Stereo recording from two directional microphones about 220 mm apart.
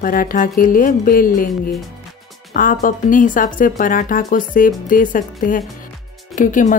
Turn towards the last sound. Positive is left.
turn(degrees=35)  # may be behind; listen again after turning